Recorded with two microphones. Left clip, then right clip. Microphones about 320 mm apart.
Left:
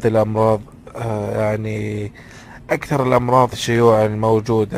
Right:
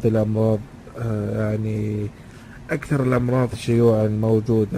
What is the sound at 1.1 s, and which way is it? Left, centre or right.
Speech, left.